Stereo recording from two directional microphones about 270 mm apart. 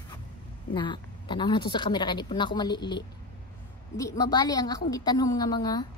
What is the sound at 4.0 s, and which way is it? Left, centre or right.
A woman's voice, centre.